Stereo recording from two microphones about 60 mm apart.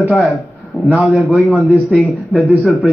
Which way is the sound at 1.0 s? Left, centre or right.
Centre.